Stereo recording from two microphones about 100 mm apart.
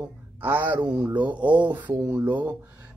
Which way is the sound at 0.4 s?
15° right (ahead or behind).